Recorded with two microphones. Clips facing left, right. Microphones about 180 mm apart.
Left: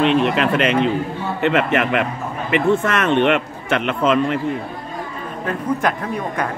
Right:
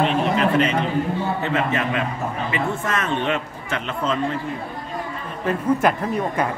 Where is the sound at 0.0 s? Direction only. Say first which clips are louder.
Left 3 dB; 80° left.